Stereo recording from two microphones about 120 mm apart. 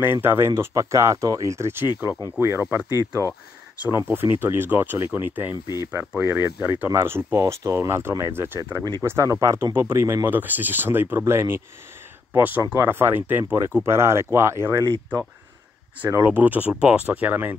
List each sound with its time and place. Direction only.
0.0 s speech: 20° right (ahead or behind)
2.6 s speech: 10° right (ahead or behind)
16.0 s speech: 20° right (ahead or behind)